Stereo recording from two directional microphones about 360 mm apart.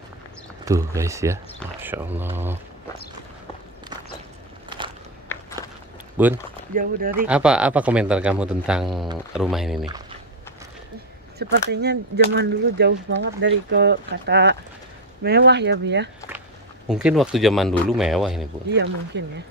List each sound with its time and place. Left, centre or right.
0.7 s a man's voice: centre
4.6 s biting: centre
5.3 s walk: centre
6.2 s a man's voice: centre
6.7 s speech: right
7.2 s a man's voice: centre
11.5 s speech: right
16.8 s a man's voice: centre
18.7 s speech: right